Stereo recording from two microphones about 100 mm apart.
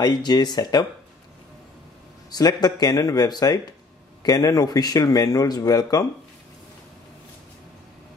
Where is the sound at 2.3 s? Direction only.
40° left (ahead or behind).